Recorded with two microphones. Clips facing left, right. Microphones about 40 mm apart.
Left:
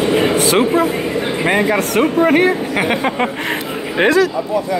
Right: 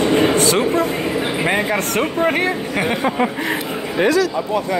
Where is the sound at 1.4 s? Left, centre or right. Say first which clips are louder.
Left 6 dB; centre.